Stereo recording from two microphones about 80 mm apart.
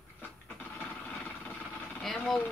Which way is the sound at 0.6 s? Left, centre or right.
Left.